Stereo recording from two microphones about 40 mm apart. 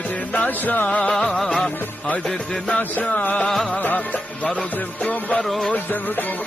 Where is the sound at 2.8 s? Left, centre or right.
Left.